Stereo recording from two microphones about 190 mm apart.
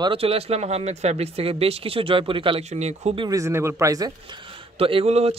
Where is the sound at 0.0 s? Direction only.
30° right (ahead or behind).